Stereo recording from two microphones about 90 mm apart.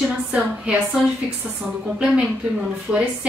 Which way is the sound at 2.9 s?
15° right (ahead or behind).